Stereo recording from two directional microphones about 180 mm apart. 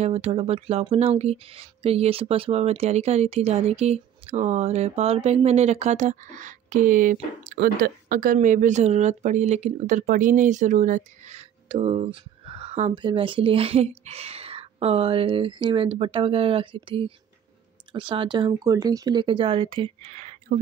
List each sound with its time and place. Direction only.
0.0 s speech: 35° right (ahead or behind)